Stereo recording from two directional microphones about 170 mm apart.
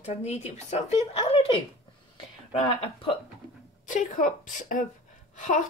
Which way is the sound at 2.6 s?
30° left (ahead or behind).